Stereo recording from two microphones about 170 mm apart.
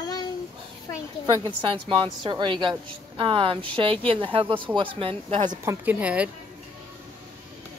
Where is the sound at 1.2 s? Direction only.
25° right (ahead or behind).